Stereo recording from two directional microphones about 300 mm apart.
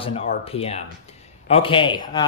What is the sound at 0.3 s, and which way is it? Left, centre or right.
Speech, centre.